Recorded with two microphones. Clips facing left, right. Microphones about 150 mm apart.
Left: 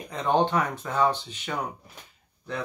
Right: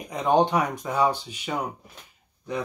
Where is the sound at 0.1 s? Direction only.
15° right (ahead or behind).